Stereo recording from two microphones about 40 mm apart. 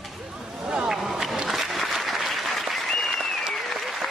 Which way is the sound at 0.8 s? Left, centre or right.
Centre.